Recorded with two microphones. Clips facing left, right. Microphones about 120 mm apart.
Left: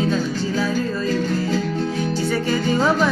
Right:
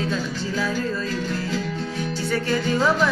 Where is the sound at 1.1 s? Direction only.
40° left (ahead or behind).